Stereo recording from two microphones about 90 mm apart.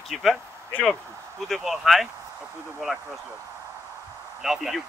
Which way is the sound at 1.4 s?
Centre (ahead or behind).